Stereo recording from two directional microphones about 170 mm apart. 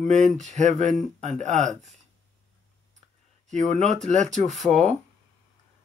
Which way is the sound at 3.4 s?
45° right (ahead or behind).